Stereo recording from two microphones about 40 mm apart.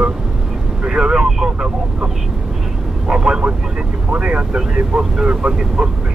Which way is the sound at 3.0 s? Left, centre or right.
Centre.